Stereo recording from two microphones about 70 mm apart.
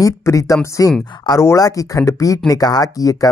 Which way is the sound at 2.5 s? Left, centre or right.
Left.